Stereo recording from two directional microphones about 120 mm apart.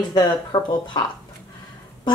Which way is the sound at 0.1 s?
35° left (ahead or behind).